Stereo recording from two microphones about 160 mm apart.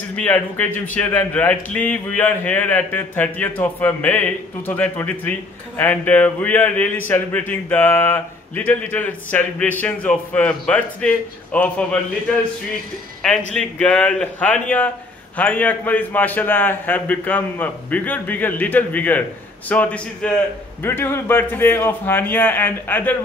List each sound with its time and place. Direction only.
0.1 s a man's voice: 10° left (ahead or behind)
13.5 s a man's voice: 5° left (ahead or behind)